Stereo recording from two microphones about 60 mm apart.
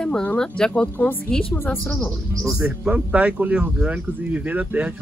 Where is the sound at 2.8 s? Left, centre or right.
Right.